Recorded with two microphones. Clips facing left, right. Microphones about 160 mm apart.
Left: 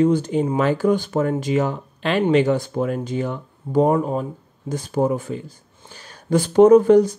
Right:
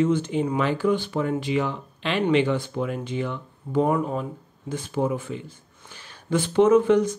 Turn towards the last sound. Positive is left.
turn(degrees=35)  # may be behind; listen again after turning